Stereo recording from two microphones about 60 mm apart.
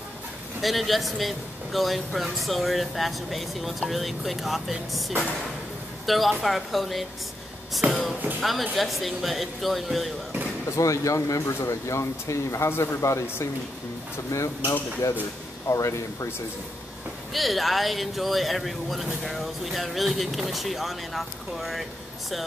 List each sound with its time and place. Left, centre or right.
0.6 s speech: centre
7.8 s speech: right
8.4 s speech: centre
10.7 s speech: left
17.3 s speech: centre